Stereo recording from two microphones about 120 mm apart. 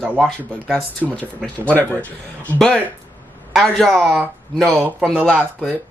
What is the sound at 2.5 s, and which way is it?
Speech, 10° left (ahead or behind).